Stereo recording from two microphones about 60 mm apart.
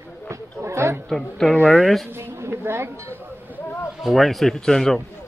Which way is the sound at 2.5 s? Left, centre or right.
Right.